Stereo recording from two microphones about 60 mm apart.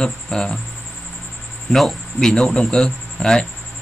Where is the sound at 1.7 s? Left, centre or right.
Centre.